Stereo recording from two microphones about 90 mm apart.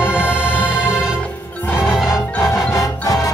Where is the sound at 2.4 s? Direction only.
35° left (ahead or behind).